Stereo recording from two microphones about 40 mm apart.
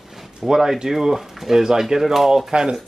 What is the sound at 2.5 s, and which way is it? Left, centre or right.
Speech, right.